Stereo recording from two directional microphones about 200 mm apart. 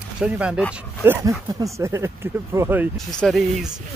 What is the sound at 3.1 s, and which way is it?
Speech, centre (ahead or behind).